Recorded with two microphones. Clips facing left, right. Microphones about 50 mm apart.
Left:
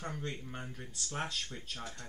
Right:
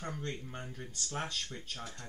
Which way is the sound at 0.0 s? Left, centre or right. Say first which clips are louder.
Even; centre.